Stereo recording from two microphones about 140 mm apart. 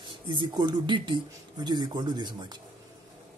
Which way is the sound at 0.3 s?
35° right (ahead or behind).